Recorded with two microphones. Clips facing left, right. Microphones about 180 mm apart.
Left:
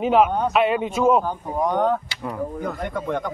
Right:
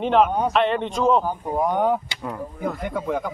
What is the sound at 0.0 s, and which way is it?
A man's voice, 5° left (ahead or behind).